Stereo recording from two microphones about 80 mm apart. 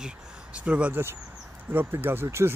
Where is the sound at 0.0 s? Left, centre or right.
Centre.